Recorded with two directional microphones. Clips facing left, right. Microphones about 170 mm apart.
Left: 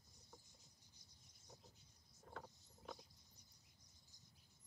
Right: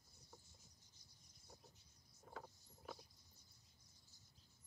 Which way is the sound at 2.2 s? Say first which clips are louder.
Even; 5° right (ahead or behind).